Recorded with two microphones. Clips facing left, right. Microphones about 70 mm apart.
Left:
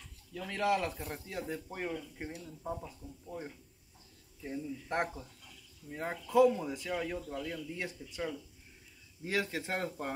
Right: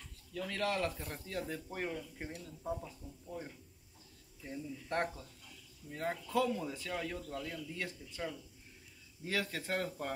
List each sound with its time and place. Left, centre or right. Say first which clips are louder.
0.5 s speech: left 4 dB; centre
1.4 s speech: left 2 dB; centre
3.3 s speech: left 2 dB; centre
9.3 s speech: left 2 dB; left